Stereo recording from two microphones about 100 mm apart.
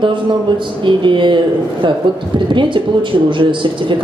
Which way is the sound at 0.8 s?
55° right (ahead or behind).